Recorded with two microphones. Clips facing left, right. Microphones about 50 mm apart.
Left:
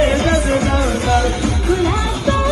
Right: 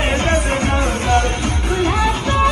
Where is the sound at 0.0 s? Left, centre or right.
Right.